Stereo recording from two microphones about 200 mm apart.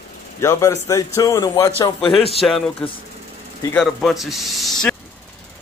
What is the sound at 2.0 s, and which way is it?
Speech, centre (ahead or behind).